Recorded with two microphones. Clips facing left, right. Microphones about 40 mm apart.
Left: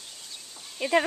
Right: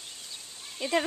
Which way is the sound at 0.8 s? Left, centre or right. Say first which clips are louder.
Left 4 dB; centre.